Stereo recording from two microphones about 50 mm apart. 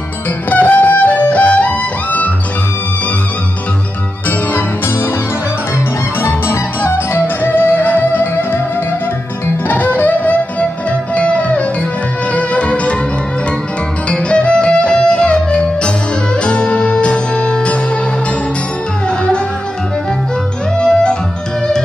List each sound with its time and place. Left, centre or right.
0.5 s music: left
4.3 s music: left
6.2 s music: left
7.2 s music: left
9.7 s music: left
14.1 s music: left
19.0 s music: centre
20.8 s music: centre